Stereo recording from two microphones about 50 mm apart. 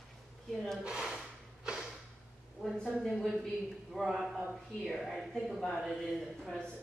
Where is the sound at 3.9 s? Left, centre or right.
Centre.